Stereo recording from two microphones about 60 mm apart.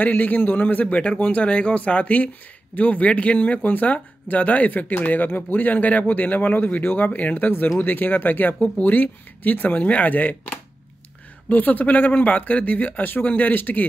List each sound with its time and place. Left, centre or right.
0.0 s a man's voice: left